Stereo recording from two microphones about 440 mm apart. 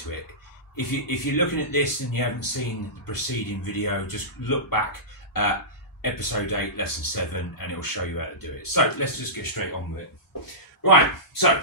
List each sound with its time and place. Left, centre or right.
0.7 s speech: left
10.8 s speech: left